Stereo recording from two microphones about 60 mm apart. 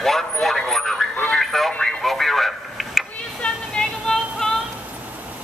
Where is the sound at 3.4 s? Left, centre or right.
Centre.